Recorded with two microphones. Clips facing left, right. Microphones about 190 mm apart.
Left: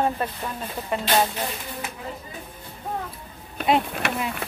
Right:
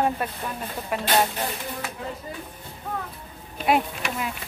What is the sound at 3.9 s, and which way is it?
Speech, 60° left (ahead or behind).